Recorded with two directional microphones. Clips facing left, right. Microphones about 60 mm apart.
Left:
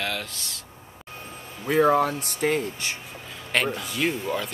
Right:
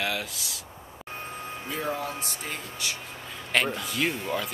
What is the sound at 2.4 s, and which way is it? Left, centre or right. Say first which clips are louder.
Speech: left 15 dB; left.